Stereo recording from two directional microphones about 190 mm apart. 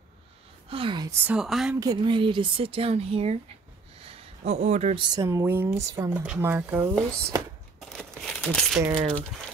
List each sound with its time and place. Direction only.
0.7 s speech: 25° right (ahead or behind)
1.2 s a woman's voice: 5° right (ahead or behind)
1.8 s speech: 20° right (ahead or behind)
4.0 s a sound: 30° right (ahead or behind)
5.1 s speech: 15° right (ahead or behind)
7.1 s a woman's voice: 5° left (ahead or behind)
7.9 s crumpling: 5° left (ahead or behind)